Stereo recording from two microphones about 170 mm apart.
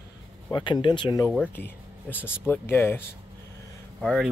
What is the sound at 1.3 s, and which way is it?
Speech, 10° left (ahead or behind).